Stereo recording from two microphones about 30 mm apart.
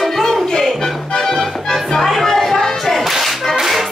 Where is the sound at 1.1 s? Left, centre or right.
Left.